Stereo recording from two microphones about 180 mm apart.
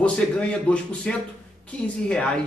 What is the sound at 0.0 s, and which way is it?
A man's voice, 5° left (ahead or behind).